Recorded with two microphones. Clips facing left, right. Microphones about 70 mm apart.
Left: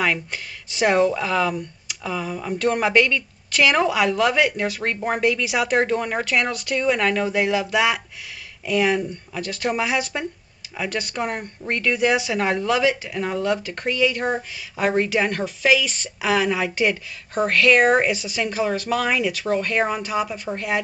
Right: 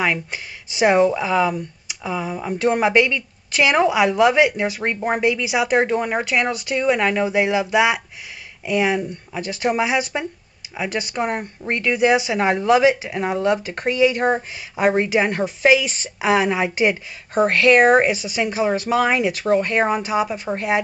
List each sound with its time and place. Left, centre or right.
0.0 s speech: centre
12.4 s speech: centre
13.1 s speech: right
18.0 s speech: centre
18.9 s speech: right